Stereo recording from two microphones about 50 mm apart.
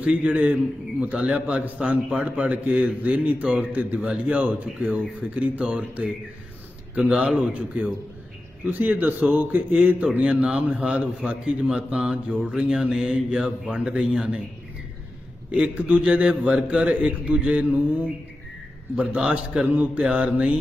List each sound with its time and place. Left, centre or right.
0.0 s a man's voice: right
7.0 s a man's voice: centre
15.5 s a man's voice: right
19.1 s speech: centre
19.6 s a man's voice: right
20.0 s a man's voice: centre